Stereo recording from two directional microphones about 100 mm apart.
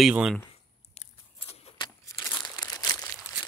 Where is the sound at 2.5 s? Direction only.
30° left (ahead or behind).